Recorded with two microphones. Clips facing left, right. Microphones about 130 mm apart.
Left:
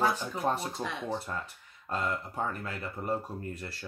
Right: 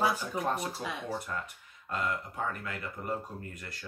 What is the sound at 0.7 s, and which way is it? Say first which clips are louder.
Speech: left 2 dB; 5° right (ahead or behind).